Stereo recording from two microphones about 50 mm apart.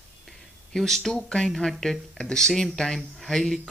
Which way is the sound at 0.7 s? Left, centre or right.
Centre.